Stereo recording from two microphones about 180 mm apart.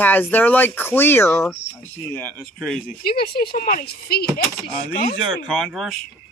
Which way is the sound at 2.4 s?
Centre (ahead or behind).